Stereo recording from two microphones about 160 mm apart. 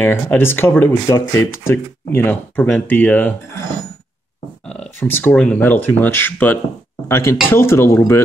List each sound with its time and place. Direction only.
0.0 s speech: 15° left (ahead or behind)
4.6 s speech: 10° left (ahead or behind)